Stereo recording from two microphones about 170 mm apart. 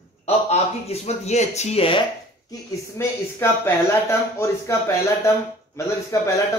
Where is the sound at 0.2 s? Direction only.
40° left (ahead or behind).